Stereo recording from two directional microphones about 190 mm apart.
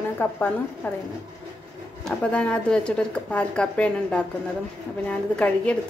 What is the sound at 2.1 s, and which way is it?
A woman's voice, 5° left (ahead or behind).